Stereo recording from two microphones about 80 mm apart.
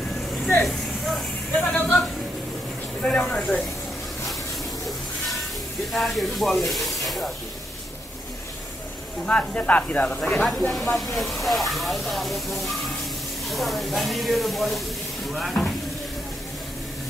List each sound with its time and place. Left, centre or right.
0.6 s vehicle: centre
1.5 s a sound: centre
3.0 s speech: centre
5.9 s speech: centre
9.2 s speech: centre
10.8 s speech: centre